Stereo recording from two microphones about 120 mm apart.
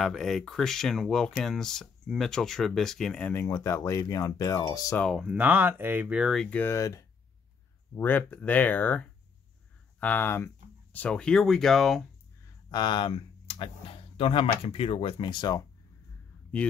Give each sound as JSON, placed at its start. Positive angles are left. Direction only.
{"t": 0.0, "sound": "speech", "side_deg": 0}
{"t": 3.3, "sound": "speech", "side_deg": 25}
{"t": 5.0, "sound": "speech", "side_deg": -5}
{"t": 6.5, "sound": "speech", "side_deg": 20}
{"t": 12.6, "sound": "speech", "side_deg": 40}